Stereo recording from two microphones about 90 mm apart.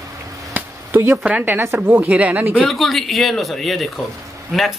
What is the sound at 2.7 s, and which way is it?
Speech, centre (ahead or behind).